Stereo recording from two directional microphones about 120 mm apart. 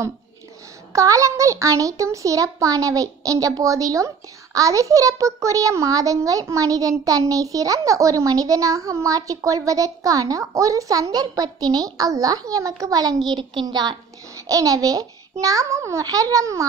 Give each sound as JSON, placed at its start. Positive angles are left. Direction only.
{"t": 0.9, "sound": "a child's voice", "side_deg": -25}